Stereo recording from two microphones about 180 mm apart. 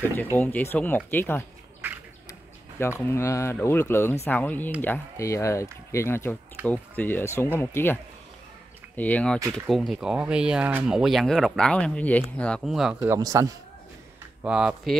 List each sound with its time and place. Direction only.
0.1 s speech: 10° left (ahead or behind)
2.8 s speech: 15° left (ahead or behind); by 13.1 s centre (ahead or behind)
13.1 s speech: 15° right (ahead or behind)
14.4 s speech: 5° right (ahead or behind)